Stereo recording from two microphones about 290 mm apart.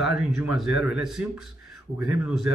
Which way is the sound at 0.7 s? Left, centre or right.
Left.